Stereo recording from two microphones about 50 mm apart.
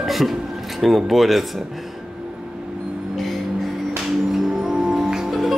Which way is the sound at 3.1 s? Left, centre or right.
Centre.